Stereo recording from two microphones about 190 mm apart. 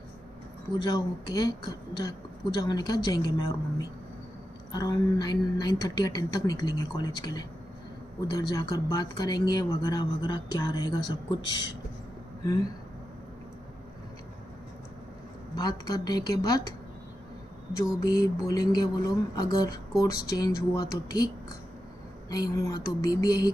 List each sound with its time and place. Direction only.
0.7 s speech: 25° left (ahead or behind)
15.5 s speech: 20° left (ahead or behind)
18.0 s speech: 20° left (ahead or behind)
22.3 s speech: 20° left (ahead or behind)